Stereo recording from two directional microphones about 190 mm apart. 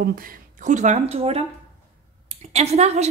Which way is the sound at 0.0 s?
50° right (ahead or behind).